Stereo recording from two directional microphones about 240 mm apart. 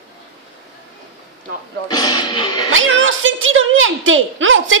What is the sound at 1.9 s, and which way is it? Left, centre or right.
Speech, centre.